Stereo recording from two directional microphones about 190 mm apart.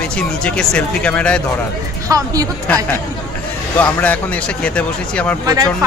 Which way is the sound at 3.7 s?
10° left (ahead or behind).